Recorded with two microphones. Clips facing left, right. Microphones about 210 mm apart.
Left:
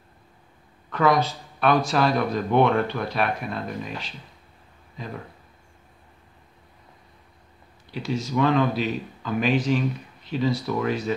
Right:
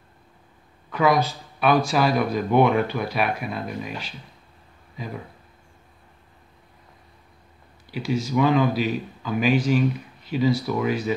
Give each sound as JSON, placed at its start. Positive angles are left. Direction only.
{"t": 0.8, "sound": "a sound", "side_deg": -5}
{"t": 1.6, "sound": "speech", "side_deg": -5}
{"t": 4.9, "sound": "speech", "side_deg": -5}
{"t": 7.9, "sound": "a man's voice", "side_deg": -5}